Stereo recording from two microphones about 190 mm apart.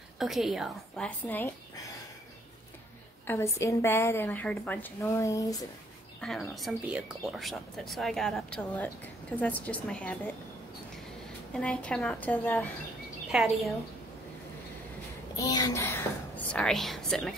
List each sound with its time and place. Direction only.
0.2 s speech: centre (ahead or behind)
3.3 s a woman's voice: 15° left (ahead or behind)
6.2 s a woman's voice: centre (ahead or behind)
11.5 s a woman's voice: 5° left (ahead or behind)
13.3 s speech: 5° right (ahead or behind)
15.3 s speech: 20° left (ahead or behind)
16.5 s speech: centre (ahead or behind)